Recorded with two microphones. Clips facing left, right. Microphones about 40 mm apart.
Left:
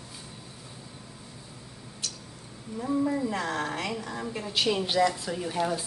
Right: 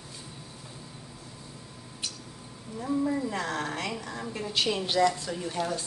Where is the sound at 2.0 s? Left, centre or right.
Centre.